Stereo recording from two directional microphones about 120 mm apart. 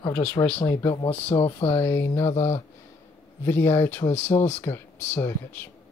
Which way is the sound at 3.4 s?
20° left (ahead or behind).